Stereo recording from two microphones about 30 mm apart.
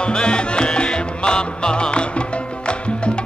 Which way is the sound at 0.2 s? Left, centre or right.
Left.